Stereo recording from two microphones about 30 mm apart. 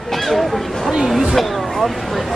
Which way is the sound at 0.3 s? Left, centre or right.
Centre.